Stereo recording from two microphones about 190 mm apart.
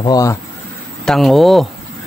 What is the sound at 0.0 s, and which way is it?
Speech, 20° left (ahead or behind).